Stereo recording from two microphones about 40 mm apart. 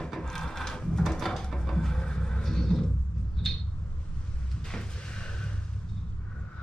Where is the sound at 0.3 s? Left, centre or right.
Centre.